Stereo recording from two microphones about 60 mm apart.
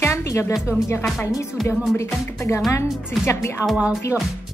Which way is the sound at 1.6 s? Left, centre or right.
Centre.